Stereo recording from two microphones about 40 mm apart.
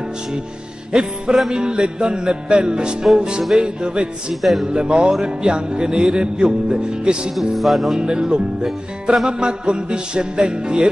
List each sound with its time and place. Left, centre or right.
0.9 s music: right
4.3 s speech: centre
4.7 s music: right
7.5 s speech: centre
8.0 s music: right